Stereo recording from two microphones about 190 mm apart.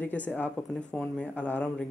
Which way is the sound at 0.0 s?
10° left (ahead or behind).